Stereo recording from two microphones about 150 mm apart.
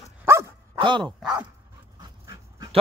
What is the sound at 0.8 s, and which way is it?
Speech, 30° right (ahead or behind).